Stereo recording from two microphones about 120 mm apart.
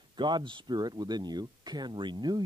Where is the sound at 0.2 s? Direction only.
40° right (ahead or behind).